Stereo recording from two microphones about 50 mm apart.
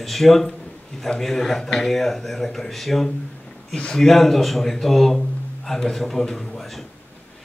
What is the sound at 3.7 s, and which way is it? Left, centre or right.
Speech, centre.